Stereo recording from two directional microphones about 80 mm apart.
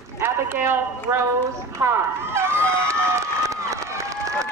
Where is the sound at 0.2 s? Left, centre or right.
Right.